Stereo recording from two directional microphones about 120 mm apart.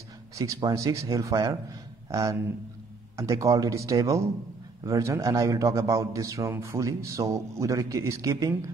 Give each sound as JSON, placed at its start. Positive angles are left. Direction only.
{"t": 0.4, "sound": "speech", "side_deg": -25}